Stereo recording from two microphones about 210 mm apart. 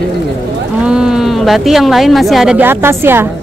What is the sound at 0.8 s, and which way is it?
Speech, 5° right (ahead or behind).